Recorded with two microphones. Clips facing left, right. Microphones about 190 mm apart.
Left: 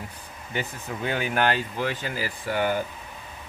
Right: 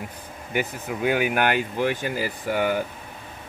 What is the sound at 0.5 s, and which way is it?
Speech, 10° right (ahead or behind).